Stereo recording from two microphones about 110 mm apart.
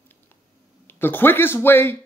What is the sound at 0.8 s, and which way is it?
Speech, 20° left (ahead or behind).